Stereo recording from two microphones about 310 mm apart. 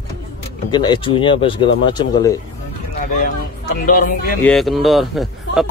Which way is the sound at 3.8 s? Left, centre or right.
Left.